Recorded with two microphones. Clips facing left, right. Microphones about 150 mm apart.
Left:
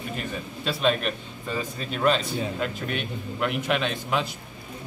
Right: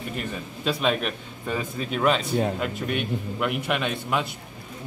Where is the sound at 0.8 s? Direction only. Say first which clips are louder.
Left 4 dB; 10° right (ahead or behind).